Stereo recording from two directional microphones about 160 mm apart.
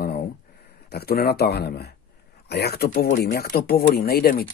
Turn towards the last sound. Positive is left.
turn(degrees=70)  # may be behind; listen again after turning